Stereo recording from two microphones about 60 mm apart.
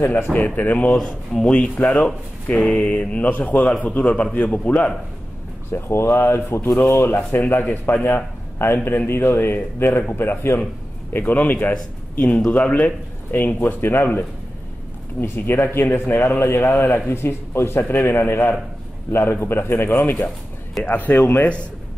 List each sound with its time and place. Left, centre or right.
0.0 s speech: left
5.7 s speech: left
7.2 s a man's voice: left
11.1 s a man's voice: left